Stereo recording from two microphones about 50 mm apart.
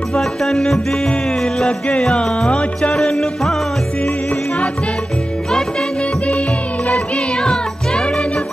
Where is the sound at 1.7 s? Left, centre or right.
Centre.